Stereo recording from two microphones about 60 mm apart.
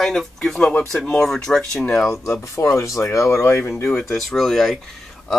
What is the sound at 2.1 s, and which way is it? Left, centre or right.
Speech, left.